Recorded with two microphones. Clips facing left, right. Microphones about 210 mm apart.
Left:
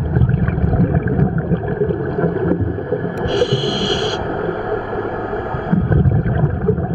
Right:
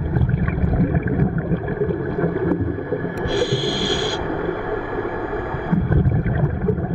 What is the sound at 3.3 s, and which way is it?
Snort, 5° right (ahead or behind).